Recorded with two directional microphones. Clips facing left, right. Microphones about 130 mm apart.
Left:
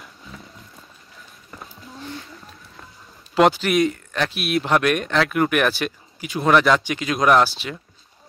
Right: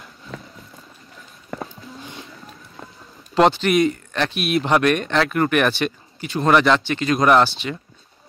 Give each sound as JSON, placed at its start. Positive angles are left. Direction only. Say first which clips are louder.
{"t": 1.5, "sound": "music", "louder": "right 10 dB", "side_deg": -90}
{"t": 3.3, "sound": "speech", "louder": "right 1 dB", "side_deg": 5}